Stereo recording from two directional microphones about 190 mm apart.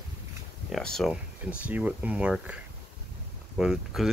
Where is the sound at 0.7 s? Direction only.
Centre (ahead or behind).